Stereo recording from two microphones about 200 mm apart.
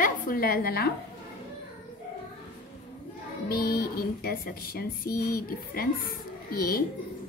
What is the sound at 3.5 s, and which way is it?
A woman's voice, 50° left (ahead or behind).